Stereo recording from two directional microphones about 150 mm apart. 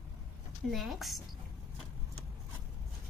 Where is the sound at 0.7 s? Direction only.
Centre (ahead or behind).